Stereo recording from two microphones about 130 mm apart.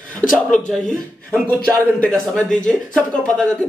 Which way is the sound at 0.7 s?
5° left (ahead or behind).